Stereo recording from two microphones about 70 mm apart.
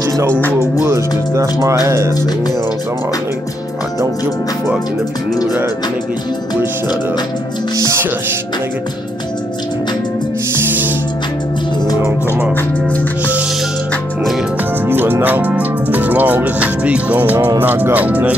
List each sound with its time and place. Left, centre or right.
0.3 s music: left
0.7 s music: right
1.9 s speech: right
14.9 s speech: right
17.6 s music: right